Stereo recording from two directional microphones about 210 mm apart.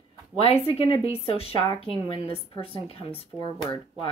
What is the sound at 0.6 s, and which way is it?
A woman's voice, 30° left (ahead or behind).